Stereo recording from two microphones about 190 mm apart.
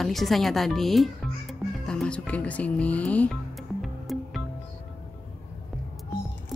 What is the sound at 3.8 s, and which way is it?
Music, centre (ahead or behind).